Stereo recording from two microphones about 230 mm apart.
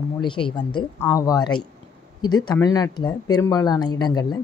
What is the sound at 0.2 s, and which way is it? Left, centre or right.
Speech, left.